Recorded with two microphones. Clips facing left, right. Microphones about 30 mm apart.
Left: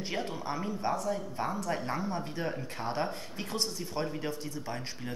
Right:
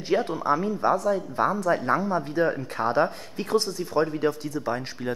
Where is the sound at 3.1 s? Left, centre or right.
Right.